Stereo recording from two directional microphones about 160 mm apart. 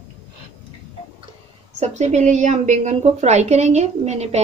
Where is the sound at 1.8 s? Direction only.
45° right (ahead or behind).